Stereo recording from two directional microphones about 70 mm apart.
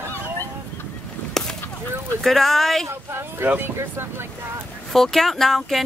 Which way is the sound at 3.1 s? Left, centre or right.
Right.